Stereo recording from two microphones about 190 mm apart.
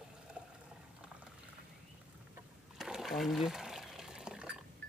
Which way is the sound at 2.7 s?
Centre (ahead or behind).